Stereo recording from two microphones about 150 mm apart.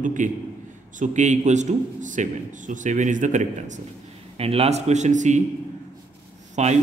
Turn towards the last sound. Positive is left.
turn(degrees=-50)  # may be behind; listen again after turning